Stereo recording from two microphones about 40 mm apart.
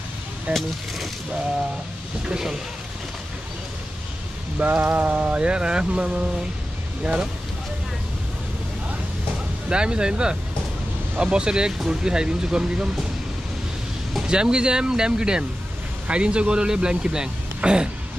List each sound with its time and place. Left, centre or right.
0.5 s speech: centre
2.2 s speech: centre
4.6 s rain on surface: right
4.9 s speech: right
9.7 s speech: right
14.2 s speech: right